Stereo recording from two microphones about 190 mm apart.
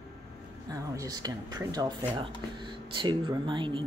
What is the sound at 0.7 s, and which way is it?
Speech, 20° right (ahead or behind).